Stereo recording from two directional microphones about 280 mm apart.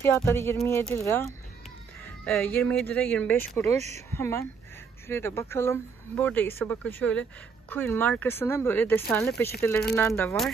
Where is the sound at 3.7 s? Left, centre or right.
Right.